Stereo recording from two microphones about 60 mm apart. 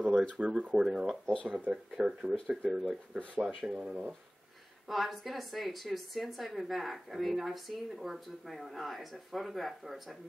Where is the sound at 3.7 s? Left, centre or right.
Right.